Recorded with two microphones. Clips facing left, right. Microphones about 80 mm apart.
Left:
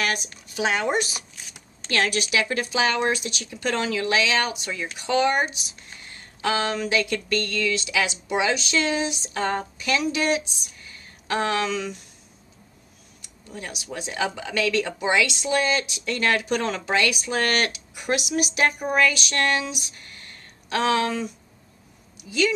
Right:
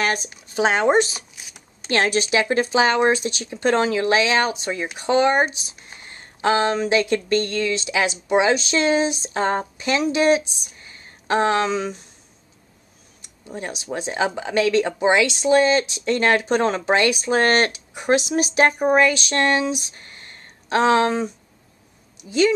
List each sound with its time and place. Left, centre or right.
0.0 s speech: right
13.2 s speech: right